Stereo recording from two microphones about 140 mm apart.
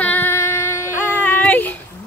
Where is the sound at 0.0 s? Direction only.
15° left (ahead or behind).